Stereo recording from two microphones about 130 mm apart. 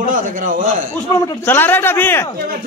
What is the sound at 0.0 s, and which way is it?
Speech, 90° right.